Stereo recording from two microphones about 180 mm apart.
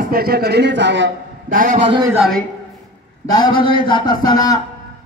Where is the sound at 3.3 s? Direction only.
25° left (ahead or behind).